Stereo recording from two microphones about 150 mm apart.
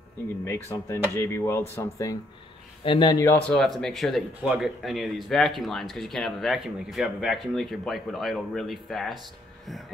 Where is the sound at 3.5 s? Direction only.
5° left (ahead or behind).